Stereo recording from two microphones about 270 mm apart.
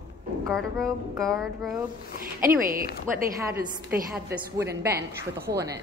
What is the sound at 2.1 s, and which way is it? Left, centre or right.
Speech, right.